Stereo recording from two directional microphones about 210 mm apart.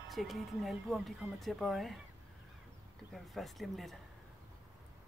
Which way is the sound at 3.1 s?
Centre (ahead or behind).